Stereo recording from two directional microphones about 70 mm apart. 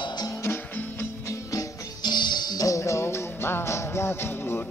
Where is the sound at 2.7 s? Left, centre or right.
Left.